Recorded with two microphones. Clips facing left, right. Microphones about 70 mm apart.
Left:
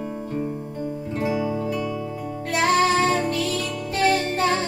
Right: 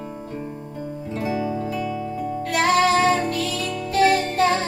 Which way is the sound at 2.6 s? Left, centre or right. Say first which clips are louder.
Right 1 dB; left.